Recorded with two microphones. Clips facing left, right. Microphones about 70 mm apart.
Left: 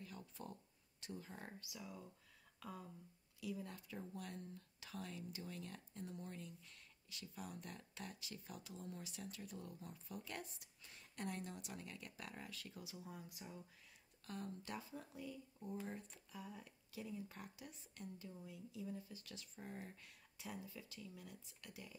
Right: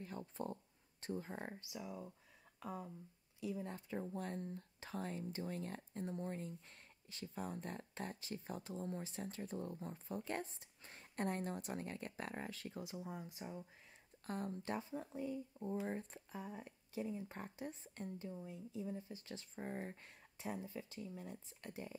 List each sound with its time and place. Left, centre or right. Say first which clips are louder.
0.0 s speech: right 8 dB; right
1.5 s speech: right 5 dB; right